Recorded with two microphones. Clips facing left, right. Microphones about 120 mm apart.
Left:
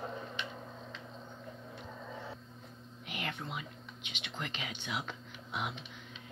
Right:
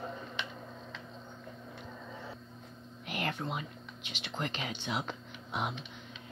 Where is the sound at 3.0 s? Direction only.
45° right (ahead or behind).